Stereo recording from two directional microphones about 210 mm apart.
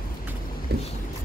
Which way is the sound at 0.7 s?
50° right (ahead or behind).